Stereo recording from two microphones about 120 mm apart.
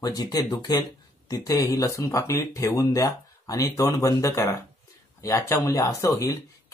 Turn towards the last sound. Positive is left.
turn(degrees=25)  # may be behind; listen again after turning